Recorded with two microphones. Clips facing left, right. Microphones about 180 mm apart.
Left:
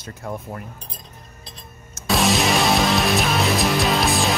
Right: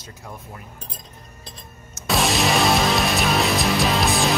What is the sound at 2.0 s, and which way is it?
Music, centre (ahead or behind).